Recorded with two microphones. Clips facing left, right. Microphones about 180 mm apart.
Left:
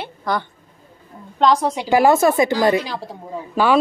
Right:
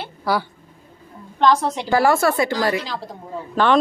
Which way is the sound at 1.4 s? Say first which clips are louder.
Left 1 dB; 15° left (ahead or behind).